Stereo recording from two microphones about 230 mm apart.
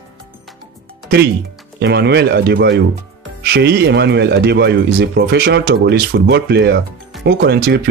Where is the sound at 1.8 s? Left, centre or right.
Right.